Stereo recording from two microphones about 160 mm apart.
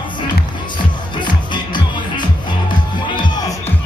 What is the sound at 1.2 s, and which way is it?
Music, 30° left (ahead or behind).